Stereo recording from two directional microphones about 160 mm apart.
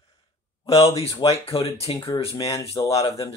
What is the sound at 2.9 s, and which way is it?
Speech, 40° left (ahead or behind).